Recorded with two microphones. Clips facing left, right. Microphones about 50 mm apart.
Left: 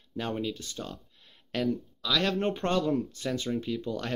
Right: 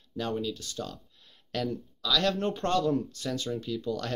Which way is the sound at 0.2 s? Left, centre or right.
Left.